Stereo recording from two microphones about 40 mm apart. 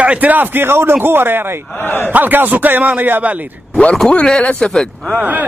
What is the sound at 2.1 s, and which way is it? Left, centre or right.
A man's voice, right.